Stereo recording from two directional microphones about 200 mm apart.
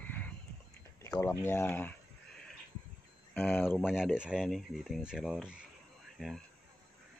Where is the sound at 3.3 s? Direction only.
10° left (ahead or behind).